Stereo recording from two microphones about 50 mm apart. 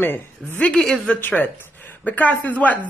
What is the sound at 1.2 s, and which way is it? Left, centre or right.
Speech, left.